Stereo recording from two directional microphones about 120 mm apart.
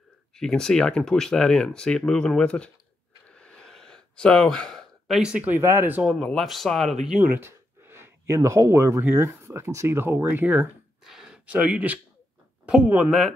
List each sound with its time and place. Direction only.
0.4 s speech: 5° left (ahead or behind)
3.3 s gasp: 10° left (ahead or behind); by 6.0 s 15° right (ahead or behind)
6.0 s speech: 5° left (ahead or behind)
7.3 s speech: 20° right (ahead or behind)